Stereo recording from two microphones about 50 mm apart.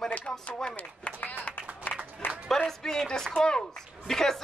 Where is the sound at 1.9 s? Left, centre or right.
Left.